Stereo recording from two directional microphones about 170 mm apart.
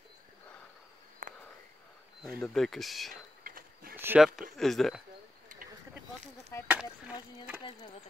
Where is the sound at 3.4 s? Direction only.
55° right (ahead or behind).